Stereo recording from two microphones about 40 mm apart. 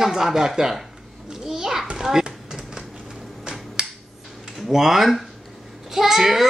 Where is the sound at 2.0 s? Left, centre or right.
Centre.